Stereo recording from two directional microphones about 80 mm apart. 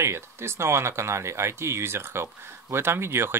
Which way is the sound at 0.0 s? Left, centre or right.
Right.